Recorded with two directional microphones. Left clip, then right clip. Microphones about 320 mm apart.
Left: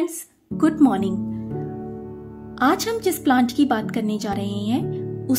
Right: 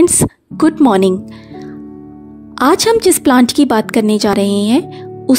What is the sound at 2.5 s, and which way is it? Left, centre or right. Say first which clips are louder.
A woman's voice: right 10 dB; right.